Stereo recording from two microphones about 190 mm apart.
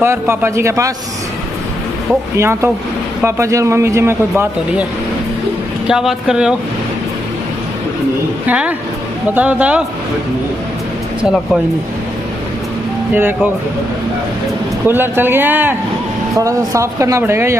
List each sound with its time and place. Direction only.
0.0 s speech: 15° right (ahead or behind)
2.3 s speech: 15° right (ahead or behind)
5.9 s speech: 5° right (ahead or behind)
8.5 s speech: 5° right (ahead or behind)
13.1 s speech: 10° right (ahead or behind)
14.9 s speech: 10° right (ahead or behind)